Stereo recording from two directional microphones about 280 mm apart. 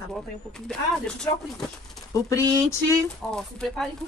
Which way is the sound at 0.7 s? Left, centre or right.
Centre.